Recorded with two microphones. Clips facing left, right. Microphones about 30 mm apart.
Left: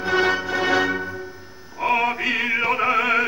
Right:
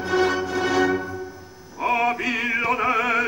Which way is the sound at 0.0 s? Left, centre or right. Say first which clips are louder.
Left 1 dB; left.